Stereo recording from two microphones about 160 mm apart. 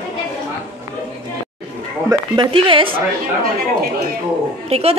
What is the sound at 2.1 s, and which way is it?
Speech, 30° right (ahead or behind).